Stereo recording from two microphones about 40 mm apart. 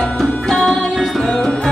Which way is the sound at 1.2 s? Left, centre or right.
Centre.